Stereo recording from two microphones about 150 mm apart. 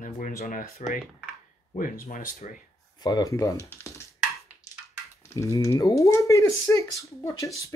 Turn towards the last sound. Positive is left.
turn(degrees=20)  # may be behind; listen again after turning